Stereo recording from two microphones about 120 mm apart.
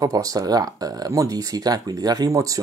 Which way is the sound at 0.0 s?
30° right (ahead or behind).